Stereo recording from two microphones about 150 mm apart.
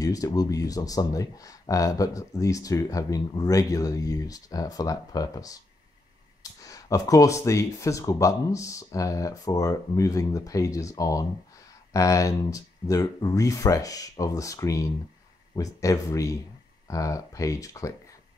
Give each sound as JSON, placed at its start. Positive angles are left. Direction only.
{"t": 0.0, "sound": "speech", "side_deg": 25}
{"t": 6.6, "sound": "speech", "side_deg": 20}